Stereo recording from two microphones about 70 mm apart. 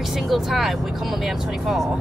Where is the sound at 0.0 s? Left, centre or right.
Centre.